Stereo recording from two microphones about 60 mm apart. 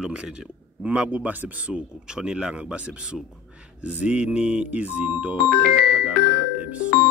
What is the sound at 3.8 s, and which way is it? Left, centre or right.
Music, centre.